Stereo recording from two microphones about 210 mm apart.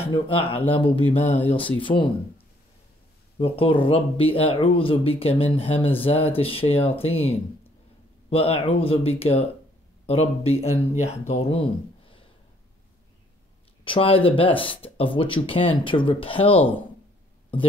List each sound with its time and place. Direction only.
0.0 s speech: 25° left (ahead or behind)
13.8 s speech: 25° left (ahead or behind)